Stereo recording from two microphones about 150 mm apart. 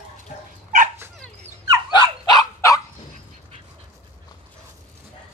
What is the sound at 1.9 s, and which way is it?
Dog, 25° left (ahead or behind).